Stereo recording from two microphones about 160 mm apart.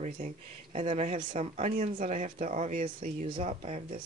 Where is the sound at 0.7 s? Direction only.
45° right (ahead or behind).